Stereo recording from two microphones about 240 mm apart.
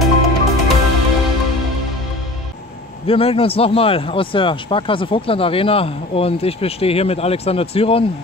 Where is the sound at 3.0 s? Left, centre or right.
Left.